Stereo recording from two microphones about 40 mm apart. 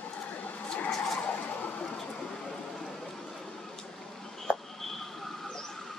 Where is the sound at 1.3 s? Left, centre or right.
Left.